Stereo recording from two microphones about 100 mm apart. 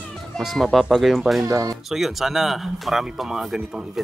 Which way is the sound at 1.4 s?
35° right (ahead or behind).